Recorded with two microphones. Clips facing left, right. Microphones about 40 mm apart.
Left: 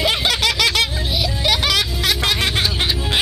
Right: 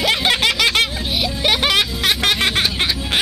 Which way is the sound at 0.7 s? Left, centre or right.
Right.